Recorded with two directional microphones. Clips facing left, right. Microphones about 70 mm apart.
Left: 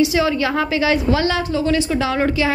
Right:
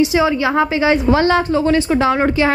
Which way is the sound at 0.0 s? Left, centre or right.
Right.